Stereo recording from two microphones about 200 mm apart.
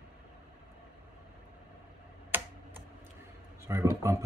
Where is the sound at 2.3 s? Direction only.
10° right (ahead or behind).